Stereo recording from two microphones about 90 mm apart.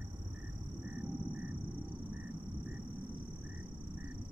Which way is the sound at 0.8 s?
15° right (ahead or behind).